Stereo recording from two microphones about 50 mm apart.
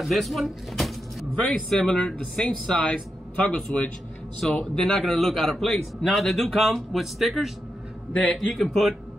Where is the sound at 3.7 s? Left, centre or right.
Centre.